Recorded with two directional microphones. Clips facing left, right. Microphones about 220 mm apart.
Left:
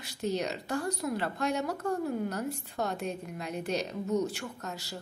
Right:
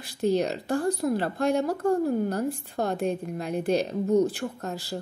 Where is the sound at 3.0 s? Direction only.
55° right (ahead or behind).